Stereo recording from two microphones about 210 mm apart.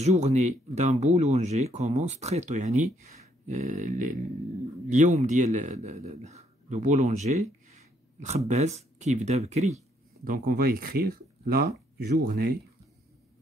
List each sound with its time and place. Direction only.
0.0 s a man's voice: 30° right (ahead or behind)